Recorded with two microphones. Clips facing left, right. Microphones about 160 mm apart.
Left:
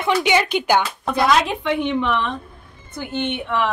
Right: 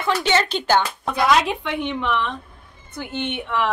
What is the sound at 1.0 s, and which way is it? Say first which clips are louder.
A woman's voice: left 1 dB; centre (ahead or behind).